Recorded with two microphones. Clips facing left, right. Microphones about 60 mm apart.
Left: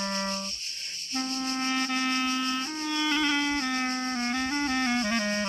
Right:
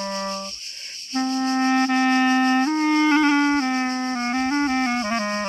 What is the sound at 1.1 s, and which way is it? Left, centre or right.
Music, right.